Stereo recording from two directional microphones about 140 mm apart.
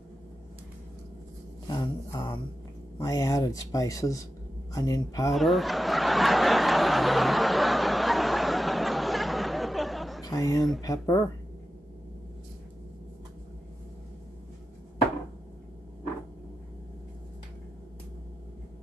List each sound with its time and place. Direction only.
1.7 s a sound: 25° left (ahead or behind)
3.0 s speech: 25° left (ahead or behind)
5.3 s snicker: centre (ahead or behind)
10.2 s speech: 25° left (ahead or behind)